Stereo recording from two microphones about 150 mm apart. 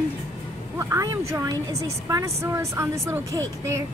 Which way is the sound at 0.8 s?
20° right (ahead or behind).